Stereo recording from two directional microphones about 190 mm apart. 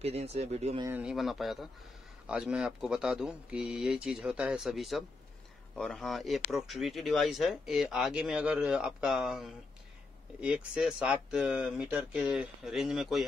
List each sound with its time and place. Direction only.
0.0 s speech: 35° right (ahead or behind)
0.8 s speech: 5° right (ahead or behind)